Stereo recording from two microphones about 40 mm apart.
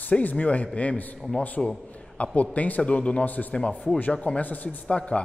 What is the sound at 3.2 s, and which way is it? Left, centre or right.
A man's voice, left.